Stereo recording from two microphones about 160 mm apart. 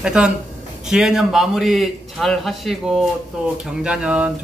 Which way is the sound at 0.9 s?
5° right (ahead or behind).